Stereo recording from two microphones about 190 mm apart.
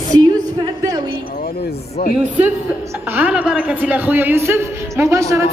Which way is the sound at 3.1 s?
10° right (ahead or behind).